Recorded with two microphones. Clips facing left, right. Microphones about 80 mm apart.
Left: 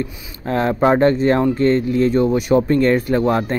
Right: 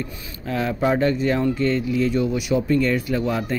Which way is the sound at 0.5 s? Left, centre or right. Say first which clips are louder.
Left 6 dB; left.